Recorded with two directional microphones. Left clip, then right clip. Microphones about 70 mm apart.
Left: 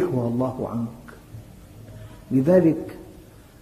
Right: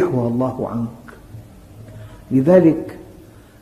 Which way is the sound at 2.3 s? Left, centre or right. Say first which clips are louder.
Right 5 dB; right.